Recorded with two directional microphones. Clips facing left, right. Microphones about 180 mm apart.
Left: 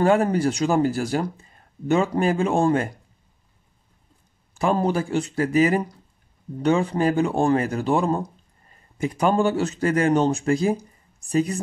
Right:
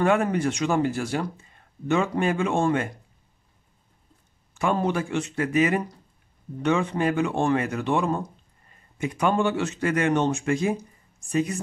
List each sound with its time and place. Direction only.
0.0 s speech: 35° left (ahead or behind)
4.6 s speech: 35° left (ahead or behind)